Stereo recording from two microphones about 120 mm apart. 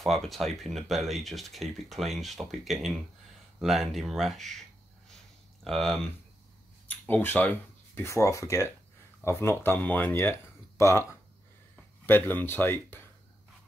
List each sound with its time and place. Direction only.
0.0 s speech: centre (ahead or behind)
5.0 s a sound: centre (ahead or behind)
6.9 s speech: 15° left (ahead or behind)